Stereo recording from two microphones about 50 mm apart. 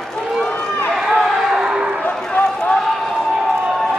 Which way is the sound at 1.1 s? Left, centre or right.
Centre.